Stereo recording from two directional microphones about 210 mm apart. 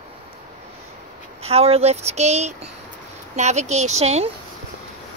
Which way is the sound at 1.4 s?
30° right (ahead or behind).